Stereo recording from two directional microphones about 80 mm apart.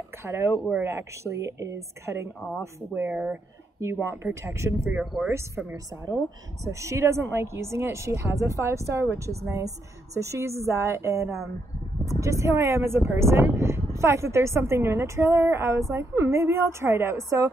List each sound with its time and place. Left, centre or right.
0.2 s speech: right
2.9 s speech: right
5.0 s speech: centre
6.6 s speech: right
10.1 s speech: right